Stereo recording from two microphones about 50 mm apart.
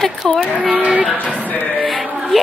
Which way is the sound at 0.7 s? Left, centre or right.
Right.